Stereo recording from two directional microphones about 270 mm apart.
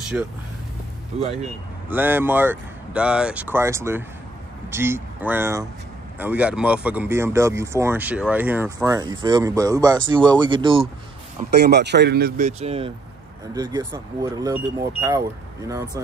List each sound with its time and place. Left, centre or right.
0.1 s speech: centre
1.1 s speech: right
1.9 s speech: centre
11.5 s speech: right; by 15.2 s centre